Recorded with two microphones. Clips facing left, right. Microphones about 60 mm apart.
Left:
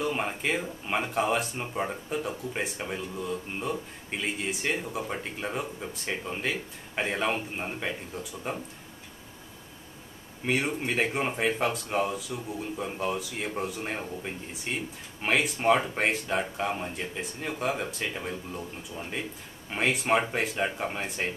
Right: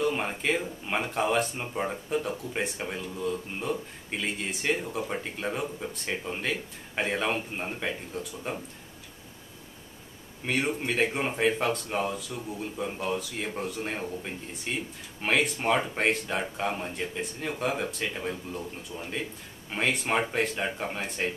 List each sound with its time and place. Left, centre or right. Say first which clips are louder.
0.0 s speech: right 1 dB; centre
10.4 s speech: even; centre